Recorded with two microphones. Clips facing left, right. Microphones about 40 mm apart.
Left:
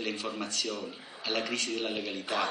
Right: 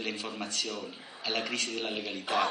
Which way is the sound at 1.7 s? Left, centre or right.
Centre.